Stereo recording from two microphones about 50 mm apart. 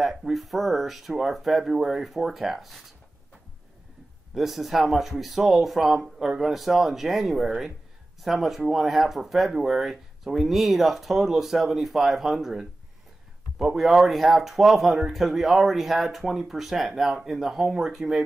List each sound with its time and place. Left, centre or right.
0.0 s speech: centre
4.3 s speech: centre